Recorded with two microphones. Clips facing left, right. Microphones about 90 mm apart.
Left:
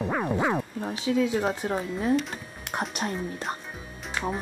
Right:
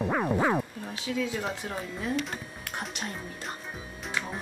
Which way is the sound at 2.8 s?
40° left (ahead or behind).